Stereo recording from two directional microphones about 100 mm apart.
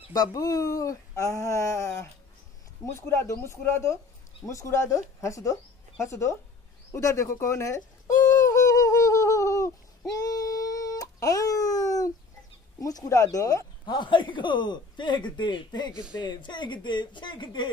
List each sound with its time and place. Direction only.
0.1 s speech: 40° left (ahead or behind)
6.9 s bird: 30° left (ahead or behind)
10.1 s baby cry: 35° left (ahead or behind)
12.8 s speech: 35° left (ahead or behind)
13.8 s speech: 50° left (ahead or behind)